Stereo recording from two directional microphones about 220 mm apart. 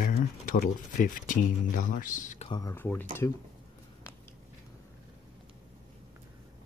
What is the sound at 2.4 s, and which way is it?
Speech, 15° left (ahead or behind).